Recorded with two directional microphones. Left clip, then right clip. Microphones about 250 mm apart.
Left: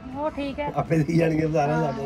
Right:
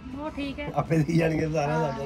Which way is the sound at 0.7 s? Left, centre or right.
Centre.